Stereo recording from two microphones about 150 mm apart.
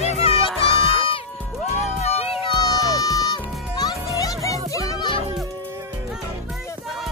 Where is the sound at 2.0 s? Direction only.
40° left (ahead or behind).